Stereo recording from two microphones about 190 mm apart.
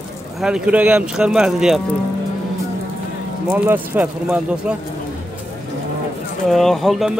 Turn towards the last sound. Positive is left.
turn(degrees=0)  # may be behind; listen again after turning